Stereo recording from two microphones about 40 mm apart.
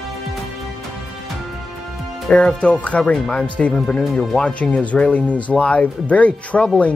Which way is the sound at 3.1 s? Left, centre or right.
Left.